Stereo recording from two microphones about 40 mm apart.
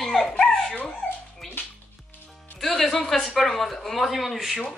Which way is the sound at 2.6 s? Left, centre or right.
Centre.